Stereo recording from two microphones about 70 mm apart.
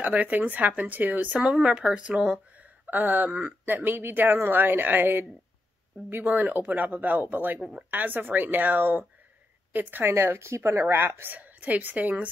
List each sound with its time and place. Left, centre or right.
0.0 s speech: right
1.4 s a woman's voice: centre
2.9 s speech: right
6.2 s speech: right
10.1 s speech: right